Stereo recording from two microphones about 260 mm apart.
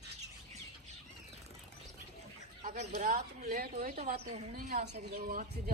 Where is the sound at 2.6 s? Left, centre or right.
Right.